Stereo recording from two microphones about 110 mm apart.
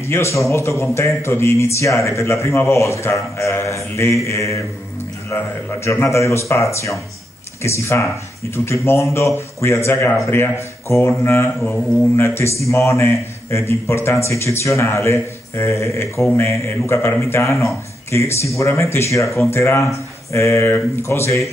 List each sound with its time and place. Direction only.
0.0 s a man's voice: 25° left (ahead or behind)
5.9 s a man's voice: 25° left (ahead or behind)